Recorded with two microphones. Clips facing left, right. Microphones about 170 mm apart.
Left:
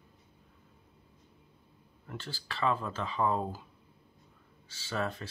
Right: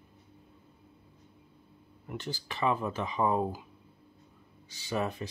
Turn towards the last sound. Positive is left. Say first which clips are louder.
# right 3 dB
turn(degrees=-15)  # may be behind; listen again after turning